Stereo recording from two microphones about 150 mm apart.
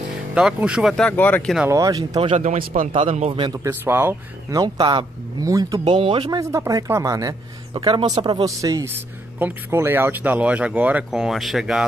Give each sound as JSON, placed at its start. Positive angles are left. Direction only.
{"t": 0.3, "sound": "speech", "side_deg": -5}
{"t": 1.7, "sound": "speech", "side_deg": -25}
{"t": 2.3, "sound": "speech", "side_deg": -55}
{"t": 2.9, "sound": "speech", "side_deg": -40}
{"t": 3.4, "sound": "speech", "side_deg": -20}
{"t": 5.9, "sound": "speech", "side_deg": -35}
{"t": 6.4, "sound": "speech", "side_deg": -20}